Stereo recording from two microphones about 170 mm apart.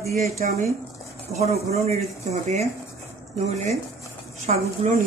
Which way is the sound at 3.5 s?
40° right (ahead or behind).